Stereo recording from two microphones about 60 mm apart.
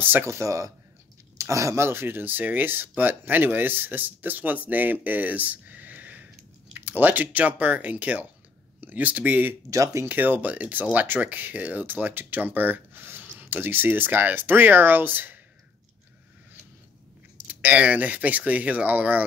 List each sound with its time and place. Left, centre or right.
0.0 s speech: right
0.3 s speech: right
1.9 s speech: right
9.7 s speech: right
10.0 s speech: right
17.5 s speech: right